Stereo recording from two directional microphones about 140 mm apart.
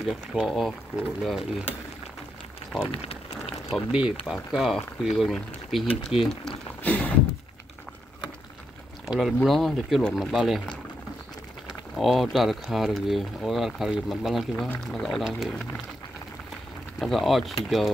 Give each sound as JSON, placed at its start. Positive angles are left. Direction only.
{"t": 0.1, "sound": "speech", "side_deg": 0}
{"t": 2.9, "sound": "a sound", "side_deg": 45}
{"t": 3.7, "sound": "speech", "side_deg": -5}
{"t": 6.8, "sound": "a sound", "side_deg": 10}
{"t": 9.0, "sound": "speech", "side_deg": 0}
{"t": 12.0, "sound": "speech", "side_deg": 0}
{"t": 17.0, "sound": "speech", "side_deg": 0}